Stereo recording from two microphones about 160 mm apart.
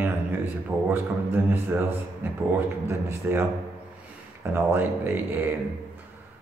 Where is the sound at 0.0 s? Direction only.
15° right (ahead or behind).